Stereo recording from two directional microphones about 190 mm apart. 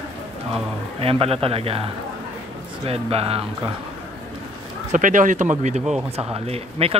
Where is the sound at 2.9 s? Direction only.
30° right (ahead or behind).